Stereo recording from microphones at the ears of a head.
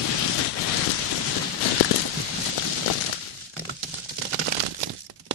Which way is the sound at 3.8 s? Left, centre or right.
Right.